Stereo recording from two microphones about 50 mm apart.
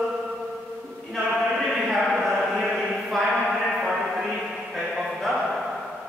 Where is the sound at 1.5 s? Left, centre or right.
Centre.